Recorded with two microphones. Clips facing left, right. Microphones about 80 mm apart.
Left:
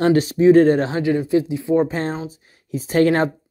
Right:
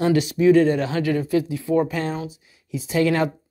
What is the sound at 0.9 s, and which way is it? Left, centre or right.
Speech, left.